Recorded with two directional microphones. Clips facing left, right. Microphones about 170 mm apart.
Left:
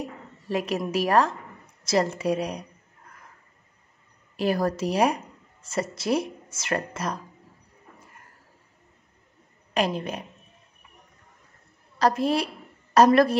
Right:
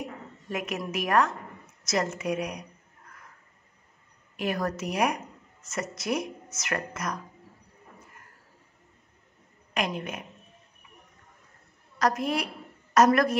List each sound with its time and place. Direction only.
0.0 s a woman's voice: 35° left (ahead or behind)
4.4 s speech: 35° left (ahead or behind)
9.8 s a woman's voice: 35° left (ahead or behind)
12.0 s a woman's voice: 30° left (ahead or behind)